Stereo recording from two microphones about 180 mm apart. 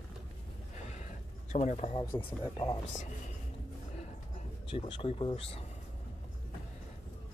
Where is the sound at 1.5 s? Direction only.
40° left (ahead or behind).